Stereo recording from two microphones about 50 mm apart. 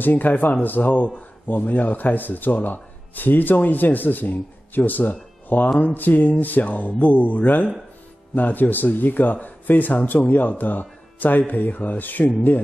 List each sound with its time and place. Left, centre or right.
0.0 s a man's voice: left